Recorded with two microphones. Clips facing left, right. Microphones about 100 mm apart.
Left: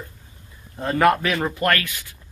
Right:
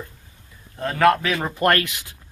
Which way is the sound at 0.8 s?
5° left (ahead or behind).